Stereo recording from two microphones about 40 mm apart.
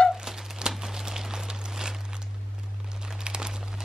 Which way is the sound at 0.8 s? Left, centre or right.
Centre.